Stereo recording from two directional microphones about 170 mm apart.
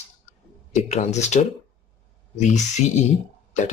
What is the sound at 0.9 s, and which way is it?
Speech, 40° left (ahead or behind).